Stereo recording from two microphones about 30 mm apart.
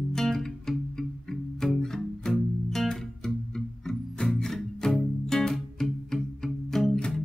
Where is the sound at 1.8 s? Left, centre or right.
Centre.